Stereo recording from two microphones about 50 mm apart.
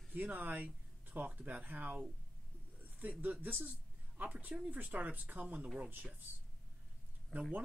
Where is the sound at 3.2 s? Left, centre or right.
Right.